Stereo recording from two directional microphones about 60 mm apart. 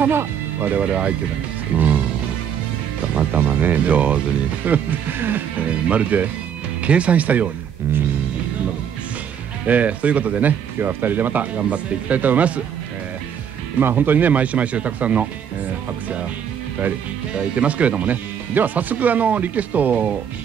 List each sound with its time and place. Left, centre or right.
0.0 s speech: right
3.2 s speech: right
9.7 s speech: right
10.8 s speech: right
13.7 s speech: right
17.6 s speech: right